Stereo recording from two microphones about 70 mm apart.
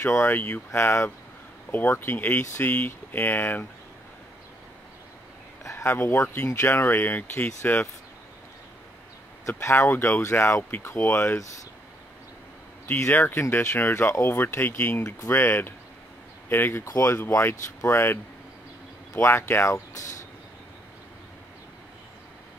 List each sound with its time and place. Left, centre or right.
0.0 s speech: left
5.6 s a sound: left
5.9 s speech: left
9.6 s speech: left
12.8 s speech: left
19.2 s speech: left